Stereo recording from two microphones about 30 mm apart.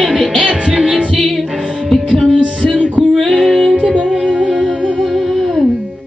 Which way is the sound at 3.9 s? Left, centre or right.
Right.